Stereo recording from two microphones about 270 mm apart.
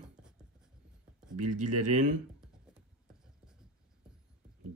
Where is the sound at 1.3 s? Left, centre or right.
Right.